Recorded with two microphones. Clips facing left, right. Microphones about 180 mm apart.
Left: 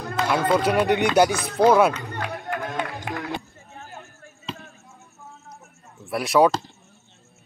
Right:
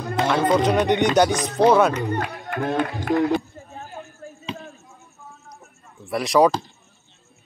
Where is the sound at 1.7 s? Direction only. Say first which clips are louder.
Even; 5° left (ahead or behind).